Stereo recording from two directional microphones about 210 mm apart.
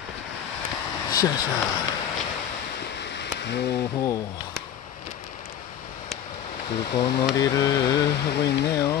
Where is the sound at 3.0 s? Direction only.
55° left (ahead or behind).